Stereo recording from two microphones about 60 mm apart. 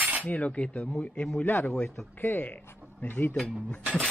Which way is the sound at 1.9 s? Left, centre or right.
Left.